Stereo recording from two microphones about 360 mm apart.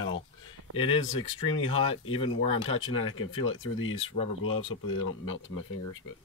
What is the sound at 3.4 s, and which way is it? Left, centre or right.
Speech, left.